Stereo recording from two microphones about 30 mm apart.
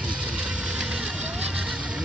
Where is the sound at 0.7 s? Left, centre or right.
Right.